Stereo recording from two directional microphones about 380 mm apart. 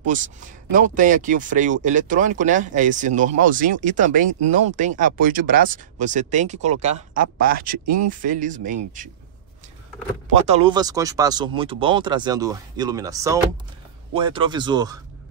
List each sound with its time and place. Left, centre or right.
0.0 s speech: centre
10.4 s speech: centre